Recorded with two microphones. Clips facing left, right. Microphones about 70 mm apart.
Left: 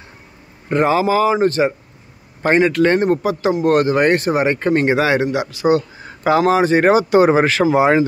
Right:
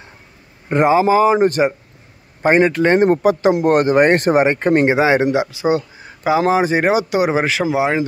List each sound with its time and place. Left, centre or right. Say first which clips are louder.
0.7 s speech: right 2 dB; right
6.0 s a sound: left 1 dB; centre
6.4 s speech: left 2 dB; centre
6.8 s speech: left 4 dB; centre